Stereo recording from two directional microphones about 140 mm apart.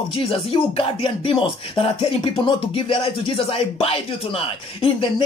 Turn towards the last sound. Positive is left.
turn(degrees=40)  # may be behind; listen again after turning